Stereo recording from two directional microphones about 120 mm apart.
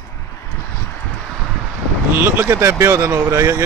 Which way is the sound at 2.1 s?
20° right (ahead or behind).